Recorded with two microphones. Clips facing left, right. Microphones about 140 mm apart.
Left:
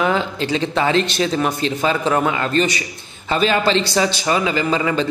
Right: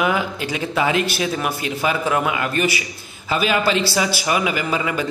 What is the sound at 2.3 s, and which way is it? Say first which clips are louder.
Speech: left 2 dB; 15° right (ahead or behind).